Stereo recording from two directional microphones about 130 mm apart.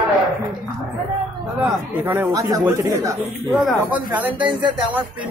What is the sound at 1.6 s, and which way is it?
Speech, 15° right (ahead or behind).